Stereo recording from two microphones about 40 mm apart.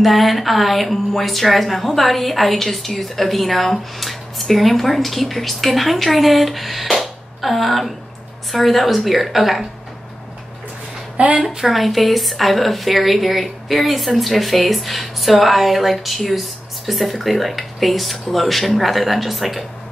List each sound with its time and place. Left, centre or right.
0.0 s speech: centre
11.1 s a woman's voice: right
11.4 s speech: centre